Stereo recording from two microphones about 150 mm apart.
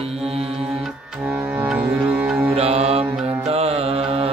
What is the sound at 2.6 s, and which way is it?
Mantra, 40° right (ahead or behind).